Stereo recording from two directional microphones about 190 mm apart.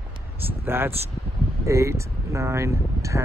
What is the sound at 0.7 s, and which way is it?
Speech, 10° right (ahead or behind).